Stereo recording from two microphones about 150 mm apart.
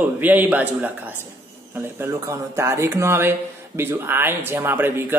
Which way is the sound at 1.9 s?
20° right (ahead or behind).